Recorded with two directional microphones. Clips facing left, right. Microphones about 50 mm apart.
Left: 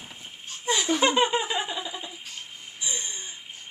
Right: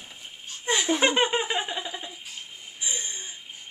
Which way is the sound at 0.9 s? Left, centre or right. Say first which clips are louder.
Left 1 dB; right.